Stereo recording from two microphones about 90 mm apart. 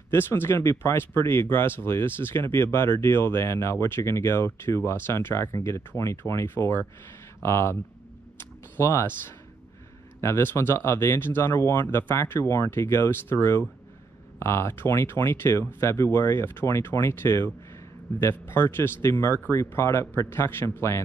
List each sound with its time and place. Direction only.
0.1 s speech: 25° left (ahead or behind)
8.4 s a sound: 25° left (ahead or behind)
10.2 s speech: 25° left (ahead or behind)